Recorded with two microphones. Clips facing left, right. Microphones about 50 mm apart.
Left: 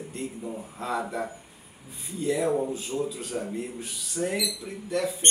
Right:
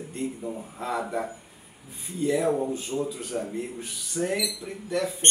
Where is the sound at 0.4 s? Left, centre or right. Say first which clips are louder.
Right 1 dB; centre.